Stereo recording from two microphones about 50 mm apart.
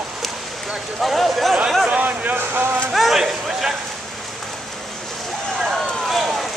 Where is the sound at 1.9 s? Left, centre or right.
Right.